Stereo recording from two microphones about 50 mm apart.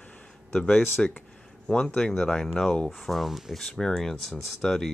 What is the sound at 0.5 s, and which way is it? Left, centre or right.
Speech, centre.